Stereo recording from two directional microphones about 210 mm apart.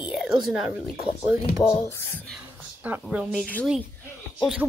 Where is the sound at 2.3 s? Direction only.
5° right (ahead or behind).